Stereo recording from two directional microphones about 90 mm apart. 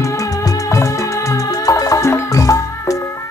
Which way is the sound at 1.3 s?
40° left (ahead or behind).